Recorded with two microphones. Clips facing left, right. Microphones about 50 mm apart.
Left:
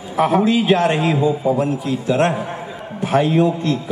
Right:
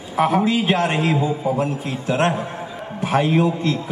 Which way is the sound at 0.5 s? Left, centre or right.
Right.